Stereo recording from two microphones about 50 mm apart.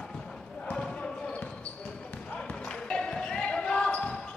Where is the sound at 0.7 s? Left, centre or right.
Left.